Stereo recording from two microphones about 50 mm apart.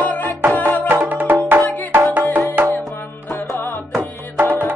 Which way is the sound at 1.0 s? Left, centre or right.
Right.